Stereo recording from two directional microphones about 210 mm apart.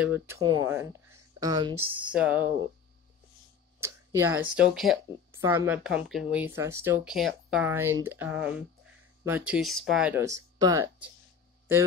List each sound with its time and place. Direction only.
0.0 s speech: 10° right (ahead or behind)
0.4 s speech: 20° right (ahead or behind)
2.0 s speech: 5° right (ahead or behind)
3.8 s speech: 15° right (ahead or behind)
5.3 s speech: 15° right (ahead or behind)